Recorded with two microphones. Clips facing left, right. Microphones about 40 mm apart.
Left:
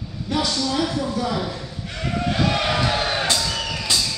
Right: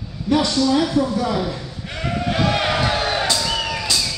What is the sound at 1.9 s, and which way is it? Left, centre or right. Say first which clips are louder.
Sheep: right 2 dB; centre.